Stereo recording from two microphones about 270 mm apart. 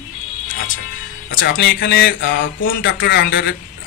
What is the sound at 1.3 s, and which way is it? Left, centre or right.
Speech, left.